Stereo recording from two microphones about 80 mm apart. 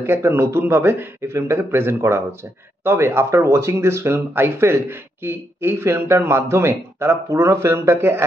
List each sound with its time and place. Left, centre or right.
0.0 s speech: right